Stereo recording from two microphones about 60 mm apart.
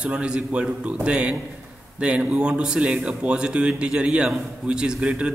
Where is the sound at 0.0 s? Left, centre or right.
Centre.